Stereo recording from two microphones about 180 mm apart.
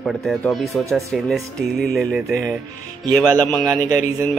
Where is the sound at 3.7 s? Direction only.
20° right (ahead or behind).